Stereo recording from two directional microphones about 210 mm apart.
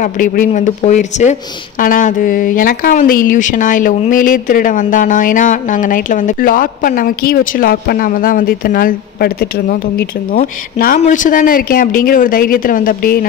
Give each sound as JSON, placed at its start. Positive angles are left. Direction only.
{"t": 0.0, "sound": "a woman's voice", "side_deg": 35}